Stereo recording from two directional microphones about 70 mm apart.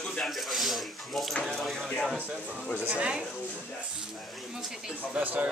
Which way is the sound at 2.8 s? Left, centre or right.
Centre.